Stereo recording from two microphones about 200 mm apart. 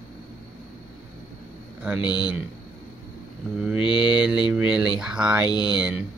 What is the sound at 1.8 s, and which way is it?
Speech, 5° right (ahead or behind).